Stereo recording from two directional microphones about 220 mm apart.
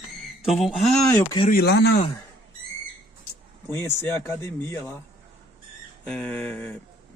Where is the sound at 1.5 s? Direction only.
50° left (ahead or behind).